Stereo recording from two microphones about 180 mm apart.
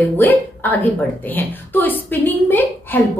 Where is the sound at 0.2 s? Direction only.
10° left (ahead or behind).